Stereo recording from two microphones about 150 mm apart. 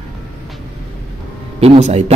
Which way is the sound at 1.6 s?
45° right (ahead or behind).